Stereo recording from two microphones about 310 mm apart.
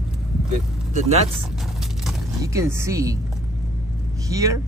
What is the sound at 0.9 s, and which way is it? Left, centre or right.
Speech, right.